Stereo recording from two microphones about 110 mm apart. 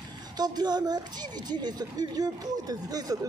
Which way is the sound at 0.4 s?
40° right (ahead or behind).